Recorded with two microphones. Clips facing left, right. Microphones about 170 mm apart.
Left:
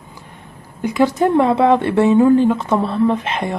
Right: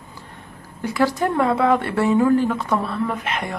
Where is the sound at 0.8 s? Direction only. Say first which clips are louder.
Left 5 dB; 20° left (ahead or behind).